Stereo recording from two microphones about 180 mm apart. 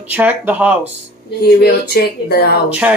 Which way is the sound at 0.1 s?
10° right (ahead or behind).